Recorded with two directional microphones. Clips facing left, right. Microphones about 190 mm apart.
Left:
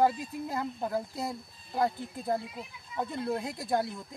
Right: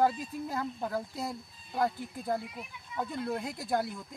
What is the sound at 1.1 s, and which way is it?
Speech, centre (ahead or behind).